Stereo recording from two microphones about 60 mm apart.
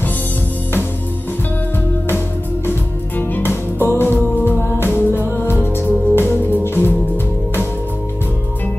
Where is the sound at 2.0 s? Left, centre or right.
Left.